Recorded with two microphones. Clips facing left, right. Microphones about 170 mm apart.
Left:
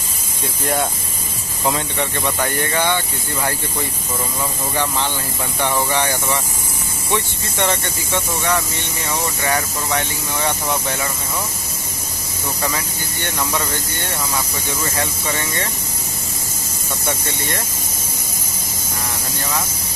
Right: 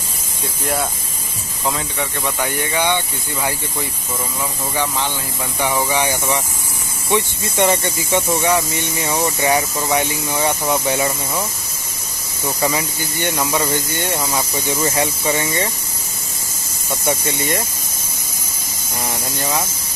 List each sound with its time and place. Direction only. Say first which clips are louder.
1.6 s speech: left 2 dB; centre (ahead or behind)
2.4 s speech: right 1 dB; 15° right (ahead or behind)
5.6 s speech: right 1 dB; 10° right (ahead or behind)
12.6 s speech: right 5 dB; 15° right (ahead or behind)